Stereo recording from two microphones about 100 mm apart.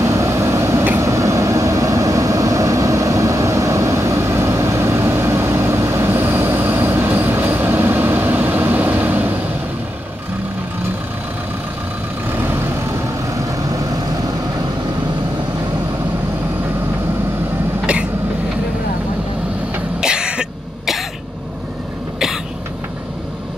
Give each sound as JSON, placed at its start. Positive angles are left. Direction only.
{"t": 0.0, "sound": "a sound", "side_deg": -30}
{"t": 0.9, "sound": "vehicle", "side_deg": -30}
{"t": 20.0, "sound": "cough", "side_deg": -10}